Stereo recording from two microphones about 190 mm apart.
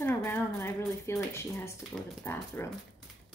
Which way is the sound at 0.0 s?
15° left (ahead or behind).